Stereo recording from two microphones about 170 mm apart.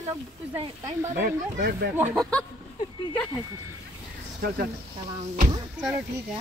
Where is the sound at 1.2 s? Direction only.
80° right.